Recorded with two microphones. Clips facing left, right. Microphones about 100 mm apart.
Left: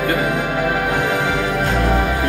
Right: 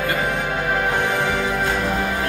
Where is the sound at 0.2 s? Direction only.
10° left (ahead or behind).